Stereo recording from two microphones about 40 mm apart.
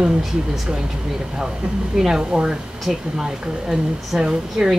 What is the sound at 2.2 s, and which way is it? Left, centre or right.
A woman's voice, right.